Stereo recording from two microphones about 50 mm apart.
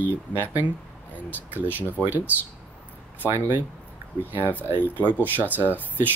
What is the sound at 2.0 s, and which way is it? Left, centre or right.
Speech, right.